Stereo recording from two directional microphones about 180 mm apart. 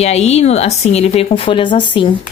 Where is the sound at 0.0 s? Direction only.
35° left (ahead or behind).